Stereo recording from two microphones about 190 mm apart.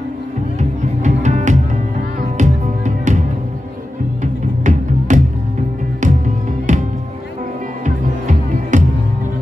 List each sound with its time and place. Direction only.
0.6 s music: 40° right (ahead or behind)
7.8 s music: 40° right (ahead or behind)